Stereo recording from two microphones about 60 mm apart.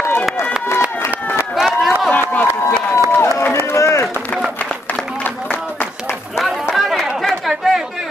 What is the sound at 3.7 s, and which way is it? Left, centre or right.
Run, left.